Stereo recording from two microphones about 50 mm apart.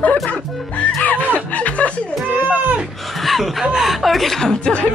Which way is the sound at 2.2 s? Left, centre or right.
Right.